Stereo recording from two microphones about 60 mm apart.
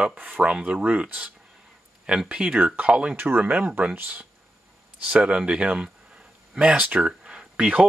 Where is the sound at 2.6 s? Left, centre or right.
Right.